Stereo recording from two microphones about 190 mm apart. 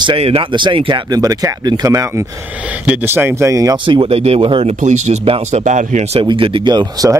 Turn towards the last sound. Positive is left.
turn(degrees=-20)  # may be behind; listen again after turning